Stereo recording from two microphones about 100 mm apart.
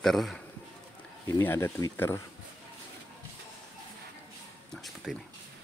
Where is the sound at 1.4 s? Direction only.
25° left (ahead or behind).